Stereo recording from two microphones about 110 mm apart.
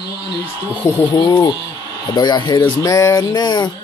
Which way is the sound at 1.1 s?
40° left (ahead or behind).